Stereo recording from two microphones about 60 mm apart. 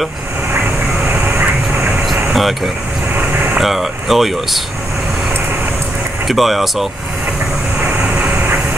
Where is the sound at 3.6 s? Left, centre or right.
Centre.